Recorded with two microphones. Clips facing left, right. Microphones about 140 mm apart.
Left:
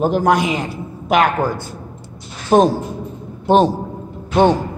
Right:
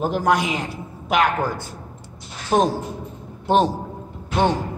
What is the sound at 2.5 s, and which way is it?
Speech, 65° left (ahead or behind).